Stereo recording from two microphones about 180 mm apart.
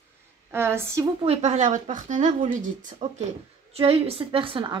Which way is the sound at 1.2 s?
35° right (ahead or behind).